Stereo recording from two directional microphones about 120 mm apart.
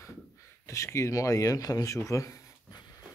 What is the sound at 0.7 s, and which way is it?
Speech, 25° left (ahead or behind).